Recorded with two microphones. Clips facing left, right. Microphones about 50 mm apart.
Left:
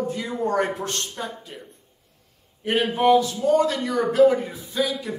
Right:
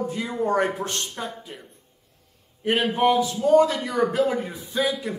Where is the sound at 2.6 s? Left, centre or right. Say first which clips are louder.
Even; centre.